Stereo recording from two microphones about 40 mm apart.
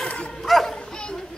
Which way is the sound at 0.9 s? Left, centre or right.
Left.